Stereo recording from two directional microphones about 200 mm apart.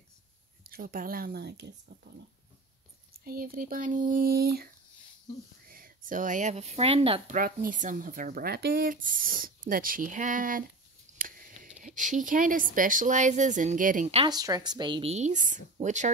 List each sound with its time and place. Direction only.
0.7 s speech: 45° right (ahead or behind)
3.1 s speech: 45° right (ahead or behind); by 7.3 s 30° right (ahead or behind)
7.3 s speech: 45° right (ahead or behind)
11.1 s a sound: 45° right (ahead or behind)
11.8 s speech: 40° right (ahead or behind)
14.3 s speech: 20° right (ahead or behind); by 16.1 s 35° right (ahead or behind)